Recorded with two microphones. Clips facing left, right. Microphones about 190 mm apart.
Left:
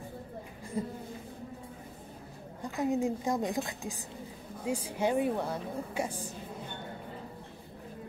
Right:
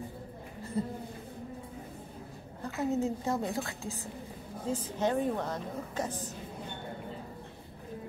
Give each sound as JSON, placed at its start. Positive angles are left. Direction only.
{"t": 2.6, "sound": "a woman's voice", "side_deg": 15}